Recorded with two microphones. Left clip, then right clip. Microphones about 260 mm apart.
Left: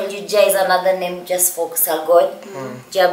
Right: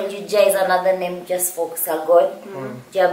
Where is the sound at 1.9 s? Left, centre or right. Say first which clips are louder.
Left 1 dB; centre.